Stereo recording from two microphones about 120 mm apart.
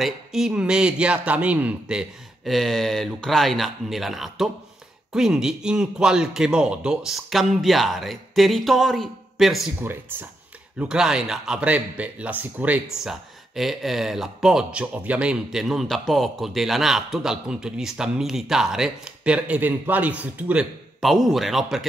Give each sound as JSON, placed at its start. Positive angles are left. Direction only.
{"t": 0.0, "sound": "speech", "side_deg": -5}
{"t": 9.8, "sound": "speech", "side_deg": -20}
{"t": 10.8, "sound": "speech", "side_deg": -5}
{"t": 21.0, "sound": "speech", "side_deg": 0}